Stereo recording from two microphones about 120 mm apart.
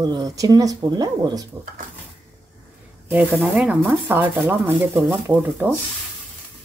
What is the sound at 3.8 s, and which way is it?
Speech, 15° right (ahead or behind).